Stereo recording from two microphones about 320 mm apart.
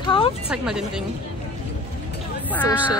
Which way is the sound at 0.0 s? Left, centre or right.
Centre.